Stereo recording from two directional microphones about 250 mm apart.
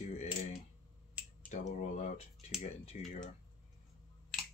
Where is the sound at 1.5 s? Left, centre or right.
Left.